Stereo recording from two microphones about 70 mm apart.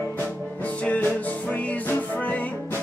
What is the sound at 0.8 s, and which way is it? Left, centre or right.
Music, left.